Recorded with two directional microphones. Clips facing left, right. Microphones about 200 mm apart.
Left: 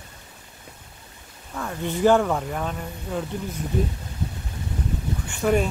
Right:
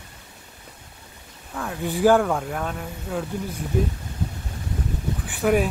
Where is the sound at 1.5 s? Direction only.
Centre (ahead or behind).